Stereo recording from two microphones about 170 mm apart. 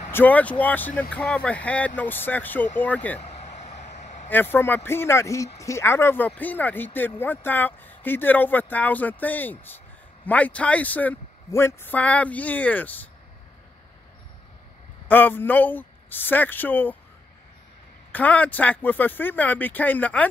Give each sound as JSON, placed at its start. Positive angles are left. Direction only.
{"t": 0.1, "sound": "speech", "side_deg": 10}
{"t": 3.2, "sound": "vehicle", "side_deg": 40}
{"t": 4.3, "sound": "speech", "side_deg": 10}
{"t": 15.0, "sound": "speech", "side_deg": 10}
{"t": 18.1, "sound": "speech", "side_deg": 10}